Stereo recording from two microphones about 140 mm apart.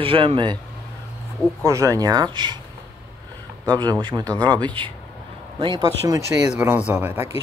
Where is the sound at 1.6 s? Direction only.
20° right (ahead or behind).